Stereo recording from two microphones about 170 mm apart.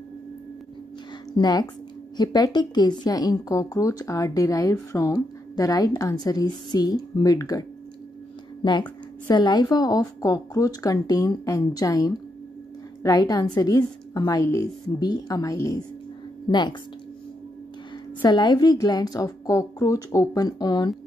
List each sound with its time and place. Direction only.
1.3 s a woman's voice: 25° left (ahead or behind)
9.3 s a woman's voice: 25° left (ahead or behind)
18.2 s a woman's voice: 25° left (ahead or behind)